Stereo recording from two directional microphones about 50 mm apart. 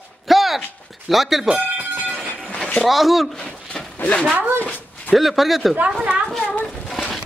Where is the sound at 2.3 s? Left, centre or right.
Centre.